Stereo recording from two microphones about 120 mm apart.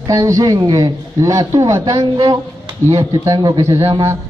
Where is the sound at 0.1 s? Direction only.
30° right (ahead or behind).